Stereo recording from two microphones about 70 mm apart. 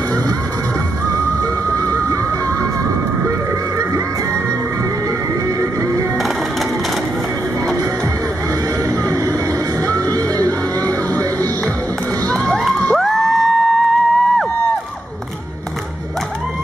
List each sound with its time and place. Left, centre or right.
1.7 s music: right
5.6 s music: right
9.8 s music: right
12.3 s crowd: centre
12.9 s music: centre